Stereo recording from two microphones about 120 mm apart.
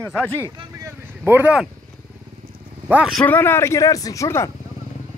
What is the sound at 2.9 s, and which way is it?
Speech, 15° right (ahead or behind).